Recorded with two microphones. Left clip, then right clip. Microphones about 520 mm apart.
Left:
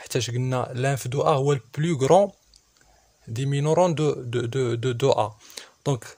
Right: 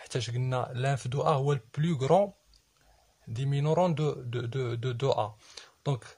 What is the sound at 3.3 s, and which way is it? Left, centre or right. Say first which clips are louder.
Speech: left 7 dB; right.